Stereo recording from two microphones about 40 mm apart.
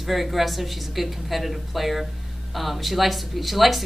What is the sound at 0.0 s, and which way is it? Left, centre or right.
Speech, centre.